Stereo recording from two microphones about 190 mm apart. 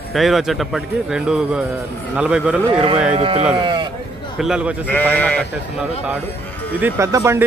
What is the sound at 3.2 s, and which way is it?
Speech, 30° right (ahead or behind).